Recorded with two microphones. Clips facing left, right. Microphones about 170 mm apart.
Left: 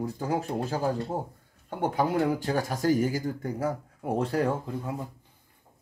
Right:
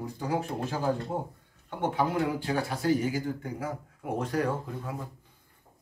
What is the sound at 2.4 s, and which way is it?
Speech, 45° left (ahead or behind).